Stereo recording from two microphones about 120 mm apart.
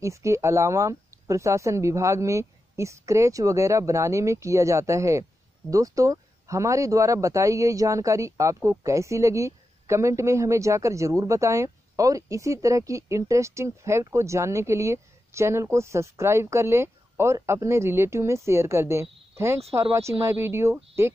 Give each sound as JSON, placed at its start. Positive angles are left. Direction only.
{"t": 0.0, "sound": "speech", "side_deg": -25}